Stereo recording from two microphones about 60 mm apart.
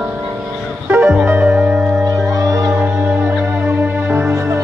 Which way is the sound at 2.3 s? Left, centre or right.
Right.